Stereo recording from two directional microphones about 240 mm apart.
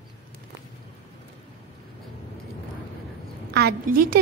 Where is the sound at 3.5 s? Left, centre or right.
Right.